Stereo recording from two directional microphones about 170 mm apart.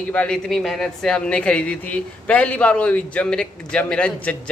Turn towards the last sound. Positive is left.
turn(degrees=5)  # may be behind; listen again after turning